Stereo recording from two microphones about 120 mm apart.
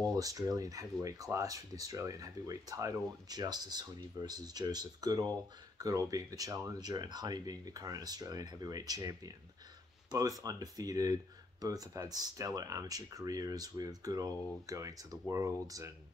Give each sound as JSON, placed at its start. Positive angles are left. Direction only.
{"t": 0.1, "sound": "speech", "side_deg": -30}
{"t": 10.4, "sound": "speech", "side_deg": -30}